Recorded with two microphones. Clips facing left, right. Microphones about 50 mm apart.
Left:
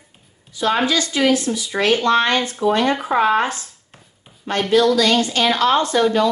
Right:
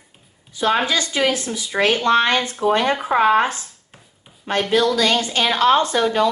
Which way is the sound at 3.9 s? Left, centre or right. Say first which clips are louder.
Even; centre.